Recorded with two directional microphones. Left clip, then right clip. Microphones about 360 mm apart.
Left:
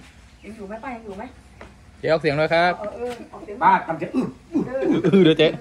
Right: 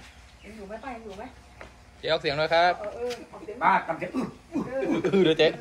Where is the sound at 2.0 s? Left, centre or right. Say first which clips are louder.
Left 6 dB; centre.